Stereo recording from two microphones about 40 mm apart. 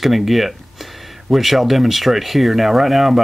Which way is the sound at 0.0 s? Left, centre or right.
Centre.